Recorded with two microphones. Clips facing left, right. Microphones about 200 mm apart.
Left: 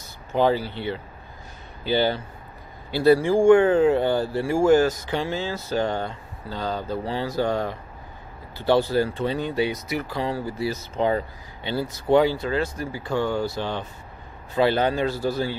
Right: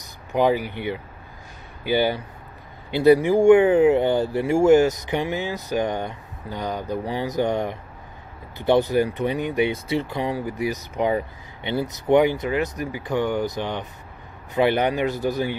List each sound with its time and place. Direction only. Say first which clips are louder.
0.0 s speech: right 1 dB; 15° right (ahead or behind)